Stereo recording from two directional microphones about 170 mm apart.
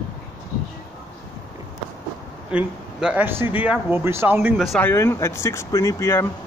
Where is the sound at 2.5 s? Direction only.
5° right (ahead or behind).